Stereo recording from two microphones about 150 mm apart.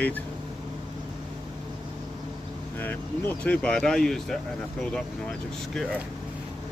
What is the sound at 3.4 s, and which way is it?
Speech, 10° left (ahead or behind).